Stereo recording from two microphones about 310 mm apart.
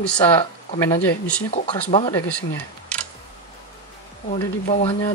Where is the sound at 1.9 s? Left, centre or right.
Centre.